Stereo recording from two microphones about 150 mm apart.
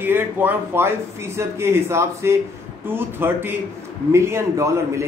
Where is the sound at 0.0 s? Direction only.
15° right (ahead or behind).